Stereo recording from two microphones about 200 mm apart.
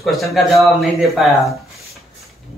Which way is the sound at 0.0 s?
Centre (ahead or behind).